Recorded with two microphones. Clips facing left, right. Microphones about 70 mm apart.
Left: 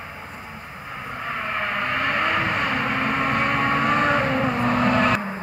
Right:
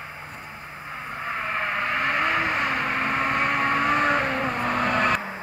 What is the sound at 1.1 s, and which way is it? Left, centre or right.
Vehicle, centre.